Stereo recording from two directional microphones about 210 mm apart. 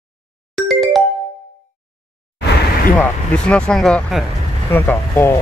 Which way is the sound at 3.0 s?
5° left (ahead or behind).